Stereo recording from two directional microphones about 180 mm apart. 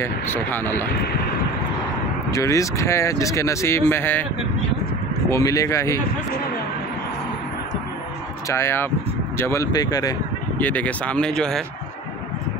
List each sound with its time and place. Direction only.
0.0 s speech: 10° left (ahead or behind)
2.3 s speech: 15° left (ahead or behind)
5.3 s speech: 20° left (ahead or behind)
8.5 s speech: 15° left (ahead or behind)
10.6 s speech: 10° left (ahead or behind)